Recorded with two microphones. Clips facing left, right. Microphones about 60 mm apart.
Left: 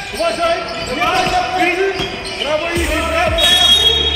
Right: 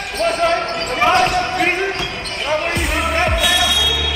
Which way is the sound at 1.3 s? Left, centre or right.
Centre.